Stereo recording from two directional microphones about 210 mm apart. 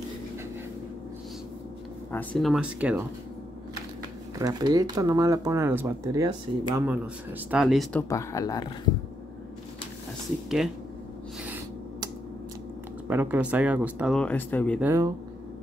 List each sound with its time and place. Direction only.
2.1 s speech: centre (ahead or behind)
4.4 s speech: 20° right (ahead or behind)
7.5 s speech: centre (ahead or behind)
8.1 s speech: 15° left (ahead or behind)
13.1 s speech: 10° right (ahead or behind); by 14.8 s 10° left (ahead or behind)
14.8 s speech: 10° right (ahead or behind)